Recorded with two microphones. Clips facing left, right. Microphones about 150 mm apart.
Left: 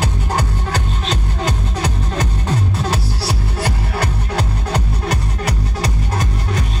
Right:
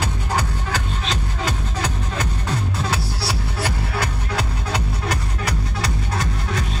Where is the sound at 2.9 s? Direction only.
45° left (ahead or behind).